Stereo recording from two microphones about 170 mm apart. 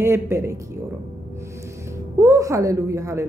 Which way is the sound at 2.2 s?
20° right (ahead or behind).